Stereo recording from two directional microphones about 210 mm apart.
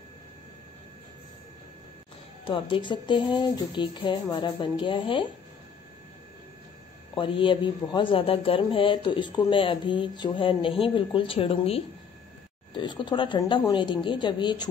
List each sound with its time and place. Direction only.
2.4 s a man's voice: 25° left (ahead or behind)
7.2 s a man's voice: 25° left (ahead or behind)